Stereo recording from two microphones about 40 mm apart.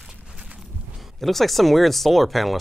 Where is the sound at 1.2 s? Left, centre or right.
Centre.